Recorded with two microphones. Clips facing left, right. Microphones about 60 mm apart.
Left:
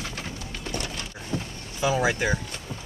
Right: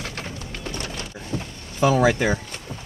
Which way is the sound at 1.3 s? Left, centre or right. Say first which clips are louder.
Right 1 dB; right.